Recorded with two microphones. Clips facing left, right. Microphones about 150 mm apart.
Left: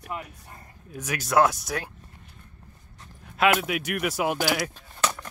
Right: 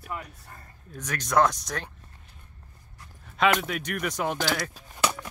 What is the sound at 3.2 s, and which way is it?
Speech, 5° left (ahead or behind).